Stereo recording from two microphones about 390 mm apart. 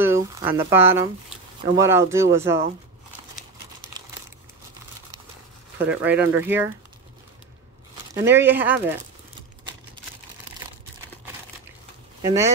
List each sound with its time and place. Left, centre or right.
0.0 s speech: centre
5.9 s speech: centre
8.1 s speech: centre
12.2 s speech: centre